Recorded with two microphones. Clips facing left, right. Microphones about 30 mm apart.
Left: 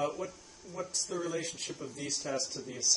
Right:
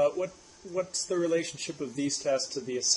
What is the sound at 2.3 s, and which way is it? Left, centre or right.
Speech, right.